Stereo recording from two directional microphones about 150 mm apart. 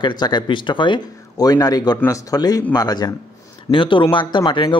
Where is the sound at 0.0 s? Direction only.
30° left (ahead or behind).